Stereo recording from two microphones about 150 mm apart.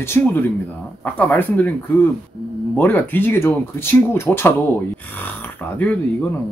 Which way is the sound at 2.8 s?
10° left (ahead or behind).